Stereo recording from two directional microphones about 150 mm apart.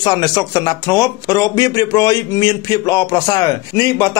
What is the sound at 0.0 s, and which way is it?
Speech, 25° left (ahead or behind).